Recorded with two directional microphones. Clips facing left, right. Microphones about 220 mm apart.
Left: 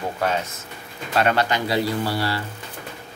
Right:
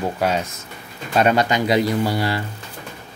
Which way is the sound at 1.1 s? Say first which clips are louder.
Right 3 dB; 15° right (ahead or behind).